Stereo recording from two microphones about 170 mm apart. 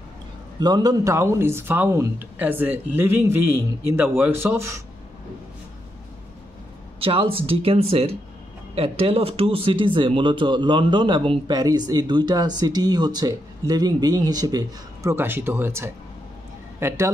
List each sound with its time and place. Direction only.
0.6 s speech: 25° right (ahead or behind)
7.0 s speech: 30° right (ahead or behind); by 17.1 s 15° right (ahead or behind)